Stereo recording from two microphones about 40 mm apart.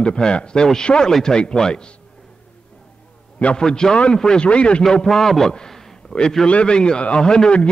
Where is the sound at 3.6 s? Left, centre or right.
Centre.